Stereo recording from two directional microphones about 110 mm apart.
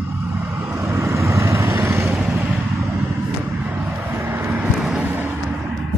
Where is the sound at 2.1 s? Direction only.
10° right (ahead or behind).